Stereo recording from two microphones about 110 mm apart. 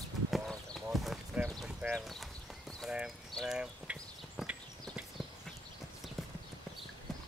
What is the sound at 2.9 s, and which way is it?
Clip-clop, 5° right (ahead or behind).